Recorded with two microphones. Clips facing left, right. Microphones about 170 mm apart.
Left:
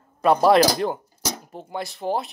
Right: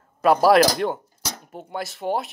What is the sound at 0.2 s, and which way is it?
Speech, 5° right (ahead or behind).